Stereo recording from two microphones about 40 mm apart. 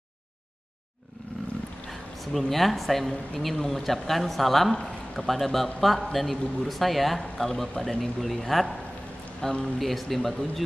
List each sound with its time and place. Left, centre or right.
1.9 s speech: centre
9.4 s speech: centre
9.8 s speech: centre